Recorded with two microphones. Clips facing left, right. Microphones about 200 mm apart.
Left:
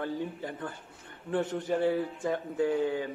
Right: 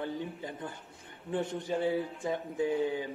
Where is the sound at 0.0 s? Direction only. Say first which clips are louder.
Left 3 dB; 15° right (ahead or behind).